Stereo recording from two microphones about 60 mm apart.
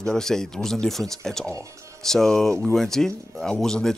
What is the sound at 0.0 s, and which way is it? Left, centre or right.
Speech, centre.